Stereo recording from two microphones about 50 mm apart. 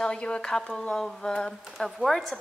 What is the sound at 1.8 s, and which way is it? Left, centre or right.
Speech, centre.